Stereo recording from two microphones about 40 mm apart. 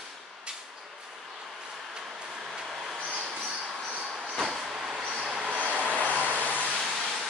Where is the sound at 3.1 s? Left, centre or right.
Right.